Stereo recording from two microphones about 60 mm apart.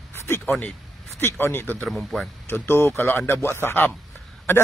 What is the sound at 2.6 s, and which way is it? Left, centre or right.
A man's voice, left.